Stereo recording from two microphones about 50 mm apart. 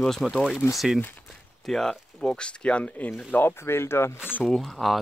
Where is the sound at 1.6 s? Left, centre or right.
Centre.